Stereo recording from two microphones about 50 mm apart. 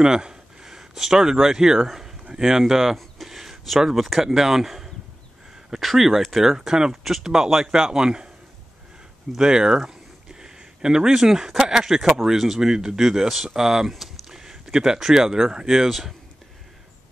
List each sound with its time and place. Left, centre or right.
0.0 s speech: centre
9.4 s speech: centre